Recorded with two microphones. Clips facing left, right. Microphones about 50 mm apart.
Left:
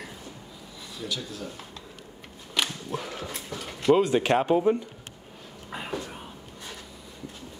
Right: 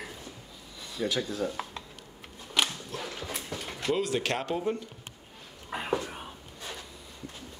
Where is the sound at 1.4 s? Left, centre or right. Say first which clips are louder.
Right 6 dB; right.